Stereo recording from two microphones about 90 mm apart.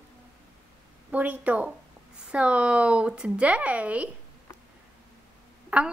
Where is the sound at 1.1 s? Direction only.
15° right (ahead or behind).